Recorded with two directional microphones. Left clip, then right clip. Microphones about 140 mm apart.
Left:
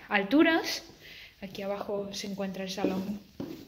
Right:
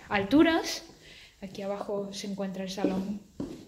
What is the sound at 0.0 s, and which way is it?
Speech, 25° right (ahead or behind).